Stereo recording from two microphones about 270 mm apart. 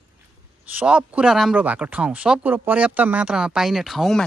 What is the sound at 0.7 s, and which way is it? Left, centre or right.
A man's voice, centre.